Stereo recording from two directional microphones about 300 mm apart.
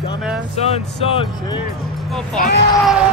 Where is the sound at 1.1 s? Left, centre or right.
Centre.